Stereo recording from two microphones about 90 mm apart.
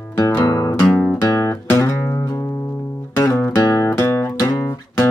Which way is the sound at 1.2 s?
25° left (ahead or behind).